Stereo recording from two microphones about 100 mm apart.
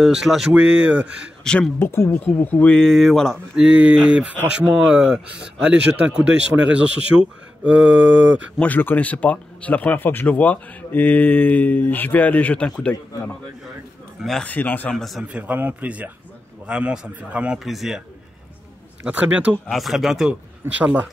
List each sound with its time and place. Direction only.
0.0 s speech: 5° right (ahead or behind)
1.4 s speech: 10° left (ahead or behind)
1.8 s speech: 25° left (ahead or behind); by 3.6 s centre (ahead or behind)
3.6 s speech: 10° right (ahead or behind)
8.5 s speech: 15° left (ahead or behind)
14.4 s speech: 15° left (ahead or behind)
15.0 s speech: centre (ahead or behind)
15.2 s speech: 15° right (ahead or behind)
17.6 s speech: centre (ahead or behind)
19.0 s speech: 15° right (ahead or behind)
19.7 s speech: centre (ahead or behind)
20.7 s speech: 15° right (ahead or behind)